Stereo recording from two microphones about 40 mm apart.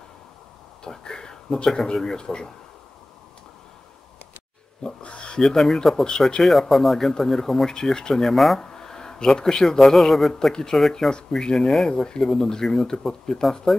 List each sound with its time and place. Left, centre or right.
0.8 s speech: centre
5.0 s a sound: left
5.4 s speech: centre
8.5 s speech: centre
10.5 s speech: centre